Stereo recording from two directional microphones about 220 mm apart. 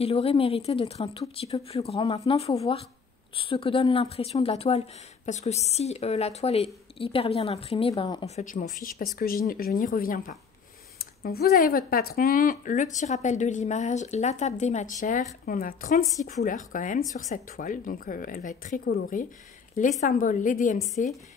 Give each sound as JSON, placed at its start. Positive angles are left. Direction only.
{"t": 0.0, "sound": "speech", "side_deg": 25}
{"t": 8.5, "sound": "speech", "side_deg": 35}